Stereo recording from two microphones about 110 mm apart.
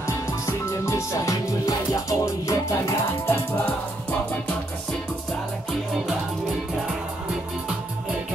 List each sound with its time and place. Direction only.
0.0 s music: 25° left (ahead or behind)